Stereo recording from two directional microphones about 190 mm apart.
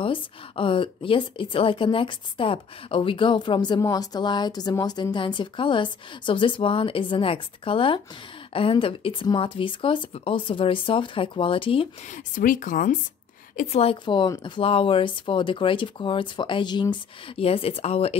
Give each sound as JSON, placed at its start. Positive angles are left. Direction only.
{"t": 0.0, "sound": "speech", "side_deg": 25}
{"t": 12.4, "sound": "speech", "side_deg": 45}
{"t": 13.6, "sound": "speech", "side_deg": 35}